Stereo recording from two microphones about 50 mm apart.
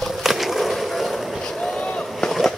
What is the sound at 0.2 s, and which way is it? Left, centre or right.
Skateboard, centre.